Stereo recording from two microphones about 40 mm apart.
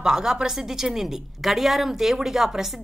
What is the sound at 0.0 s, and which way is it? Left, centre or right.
A woman's voice, centre.